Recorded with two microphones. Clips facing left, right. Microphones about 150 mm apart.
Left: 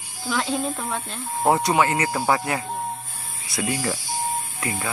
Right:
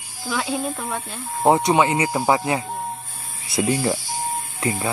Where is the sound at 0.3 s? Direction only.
5° right (ahead or behind).